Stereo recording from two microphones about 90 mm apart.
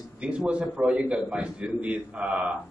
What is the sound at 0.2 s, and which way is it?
A man's voice, 10° right (ahead or behind).